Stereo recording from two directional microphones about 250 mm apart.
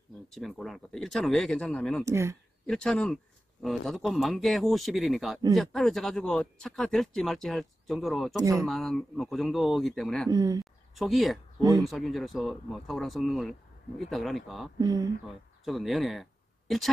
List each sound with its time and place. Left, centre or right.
0.3 s speech: centre
2.0 s speech: centre
2.6 s speech: centre
8.4 s speech: centre
8.6 s speech: centre
10.3 s speech: centre
10.6 s a sound: centre
11.7 s speech: centre
14.8 s speech: centre
15.6 s speech: centre